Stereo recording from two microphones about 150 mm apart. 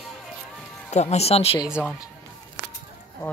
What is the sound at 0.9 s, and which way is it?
Speech, 45° left (ahead or behind).